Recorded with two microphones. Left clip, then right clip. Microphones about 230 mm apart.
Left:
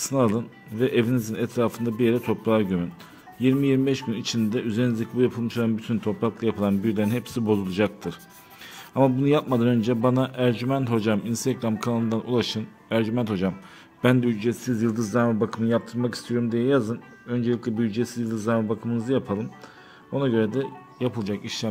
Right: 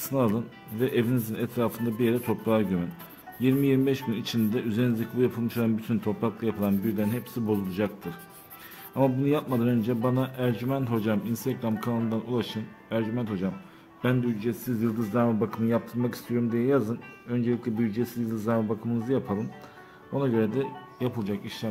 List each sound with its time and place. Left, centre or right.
0.1 s a man's voice: centre